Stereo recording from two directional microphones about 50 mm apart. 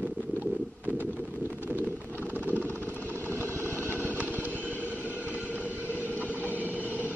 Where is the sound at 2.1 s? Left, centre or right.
Left.